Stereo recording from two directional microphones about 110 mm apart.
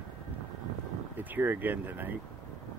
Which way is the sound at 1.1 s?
15° right (ahead or behind).